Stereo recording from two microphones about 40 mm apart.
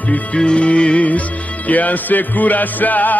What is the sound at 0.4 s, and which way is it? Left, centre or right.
Music, left.